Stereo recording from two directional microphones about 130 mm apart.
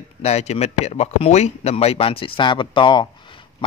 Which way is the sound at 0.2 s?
55° left (ahead or behind).